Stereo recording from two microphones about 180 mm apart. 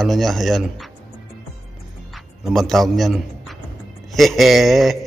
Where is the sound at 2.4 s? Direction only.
Centre (ahead or behind).